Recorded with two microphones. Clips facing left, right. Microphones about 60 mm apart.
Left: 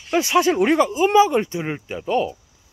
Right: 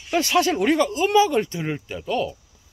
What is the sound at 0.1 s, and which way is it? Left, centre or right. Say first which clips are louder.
Speech: left 2 dB; centre.